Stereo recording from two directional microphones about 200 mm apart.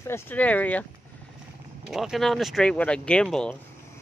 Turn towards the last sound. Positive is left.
turn(degrees=5)  # may be behind; listen again after turning